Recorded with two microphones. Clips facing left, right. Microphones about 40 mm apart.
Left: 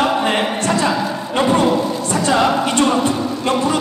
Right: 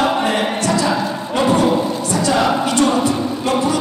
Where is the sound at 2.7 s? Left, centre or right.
Left.